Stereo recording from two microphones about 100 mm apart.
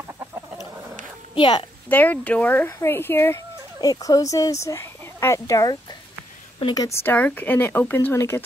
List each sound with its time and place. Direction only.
1.3 s a woman's voice: 55° left (ahead or behind)
1.9 s speech: 15° left (ahead or behind)
3.8 s speech: 40° left (ahead or behind)
7.0 s speech: 20° left (ahead or behind)